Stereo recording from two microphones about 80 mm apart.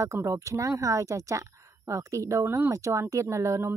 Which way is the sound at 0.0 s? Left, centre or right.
Right.